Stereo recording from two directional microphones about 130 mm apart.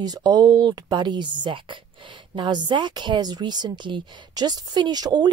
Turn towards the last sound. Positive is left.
turn(degrees=-30)  # may be behind; listen again after turning